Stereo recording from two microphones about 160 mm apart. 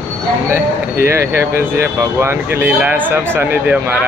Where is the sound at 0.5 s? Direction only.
15° right (ahead or behind).